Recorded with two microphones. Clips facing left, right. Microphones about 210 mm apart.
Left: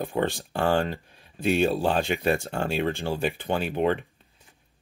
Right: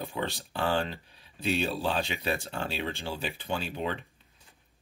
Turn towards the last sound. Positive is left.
turn(degrees=55)  # may be behind; listen again after turning